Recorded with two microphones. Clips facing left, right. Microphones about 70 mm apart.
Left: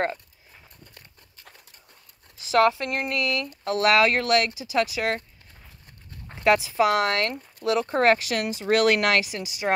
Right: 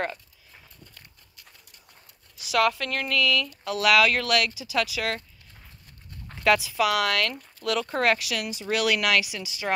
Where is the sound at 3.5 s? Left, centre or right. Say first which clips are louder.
Left 1 dB; left.